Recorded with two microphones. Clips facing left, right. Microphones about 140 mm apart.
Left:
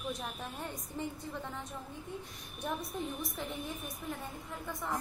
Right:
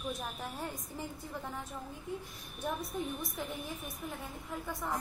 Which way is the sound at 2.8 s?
Centre (ahead or behind).